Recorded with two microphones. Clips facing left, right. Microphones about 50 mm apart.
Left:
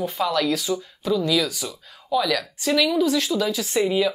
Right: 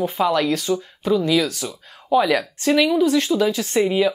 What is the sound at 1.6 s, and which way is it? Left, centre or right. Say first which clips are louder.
Speech: right 5 dB; right.